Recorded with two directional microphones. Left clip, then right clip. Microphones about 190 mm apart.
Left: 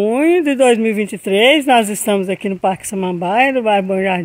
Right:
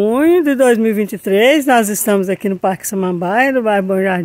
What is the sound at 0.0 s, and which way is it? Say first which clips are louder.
Speech: right 1 dB; 15° right (ahead or behind).